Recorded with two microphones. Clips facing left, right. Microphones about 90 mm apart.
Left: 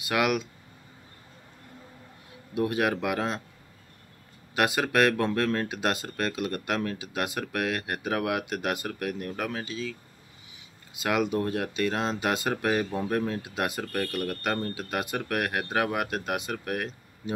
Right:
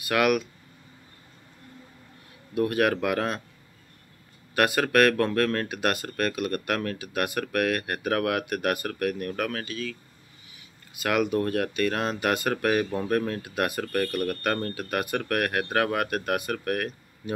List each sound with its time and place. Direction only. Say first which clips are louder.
0.0 s speech: right 3 dB; 20° left (ahead or behind)
2.5 s speech: right 3 dB; 20° left (ahead or behind)
4.6 s speech: right 2 dB; 15° left (ahead or behind)
11.0 s speech: right 2 dB; 20° left (ahead or behind)